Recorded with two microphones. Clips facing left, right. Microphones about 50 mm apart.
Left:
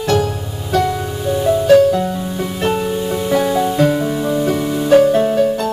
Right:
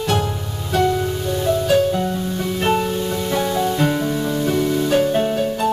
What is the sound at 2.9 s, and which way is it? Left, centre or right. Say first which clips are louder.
Music: left 4 dB; centre.